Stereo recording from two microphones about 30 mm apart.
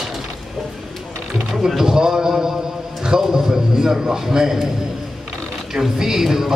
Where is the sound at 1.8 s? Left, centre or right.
Centre.